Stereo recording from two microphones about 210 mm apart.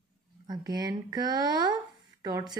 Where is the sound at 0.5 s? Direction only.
20° right (ahead or behind).